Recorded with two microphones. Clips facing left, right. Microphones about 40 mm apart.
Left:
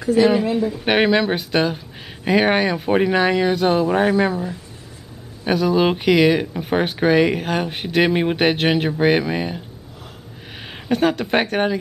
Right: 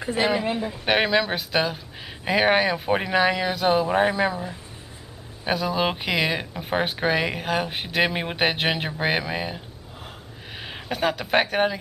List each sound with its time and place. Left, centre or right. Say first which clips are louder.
0.0 s speech: left 8 dB; right
0.7 s speech: left 3 dB; centre
10.6 s speech: left 6 dB; centre